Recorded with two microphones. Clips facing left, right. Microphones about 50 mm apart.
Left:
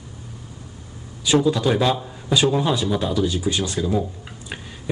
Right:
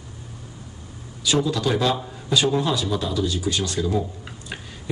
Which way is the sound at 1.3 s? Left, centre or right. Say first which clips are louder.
Left 3 dB; left.